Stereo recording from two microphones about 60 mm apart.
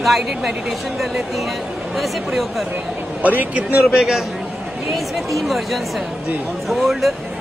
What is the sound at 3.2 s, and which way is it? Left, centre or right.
Speech, right.